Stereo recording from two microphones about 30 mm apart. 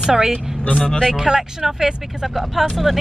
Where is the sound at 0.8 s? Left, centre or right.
Left.